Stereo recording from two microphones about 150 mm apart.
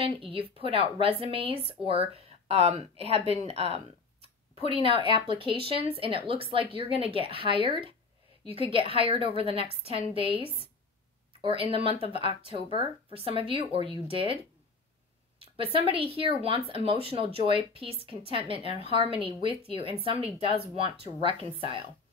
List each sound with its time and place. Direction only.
0.0 s speech: 35° right (ahead or behind)
4.9 s a woman's voice: 40° left (ahead or behind)
5.4 s speech: 40° right (ahead or behind)
10.2 s a woman's voice: 40° left (ahead or behind)
11.4 s speech: 40° right (ahead or behind)
15.4 s a woman's voice: 40° right (ahead or behind)